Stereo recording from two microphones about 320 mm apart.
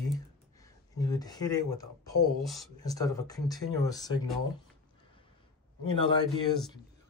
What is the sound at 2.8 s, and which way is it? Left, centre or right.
Speech, centre.